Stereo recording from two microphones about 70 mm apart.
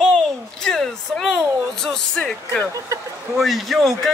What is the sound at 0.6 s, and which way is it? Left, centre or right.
Speech, centre.